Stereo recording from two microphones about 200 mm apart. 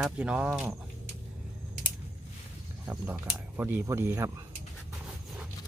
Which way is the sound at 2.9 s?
5° right (ahead or behind).